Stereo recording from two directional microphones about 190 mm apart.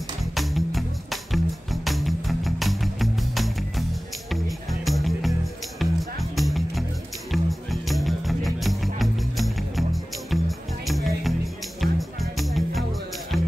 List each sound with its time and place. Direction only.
0.2 s music: centre (ahead or behind)